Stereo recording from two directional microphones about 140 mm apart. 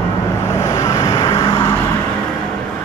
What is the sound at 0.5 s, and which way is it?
Vehicle, 20° left (ahead or behind).